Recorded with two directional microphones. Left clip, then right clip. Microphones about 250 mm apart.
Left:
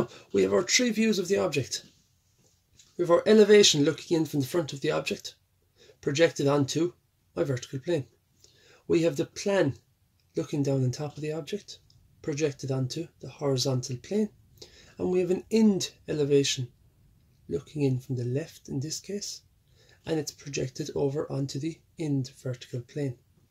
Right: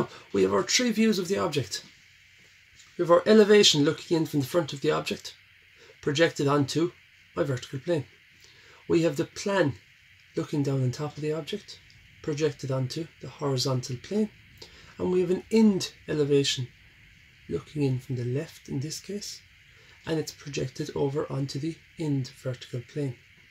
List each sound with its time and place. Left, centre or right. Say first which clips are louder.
0.1 s speech: even; left
3.0 s speech: right 1 dB; left